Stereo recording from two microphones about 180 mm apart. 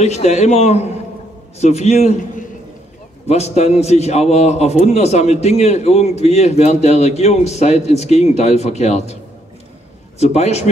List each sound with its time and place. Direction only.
0.0 s a man's voice: 35° left (ahead or behind)